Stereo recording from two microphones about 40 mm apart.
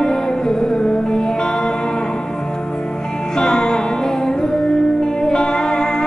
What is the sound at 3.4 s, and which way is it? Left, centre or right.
Music, centre.